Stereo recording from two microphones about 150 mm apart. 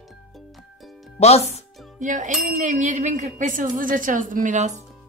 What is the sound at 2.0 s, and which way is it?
Speech, 55° right (ahead or behind).